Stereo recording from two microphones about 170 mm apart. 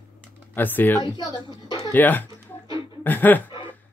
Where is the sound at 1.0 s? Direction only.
25° left (ahead or behind).